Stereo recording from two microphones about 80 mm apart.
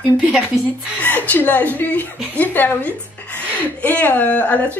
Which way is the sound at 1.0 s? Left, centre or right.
Left.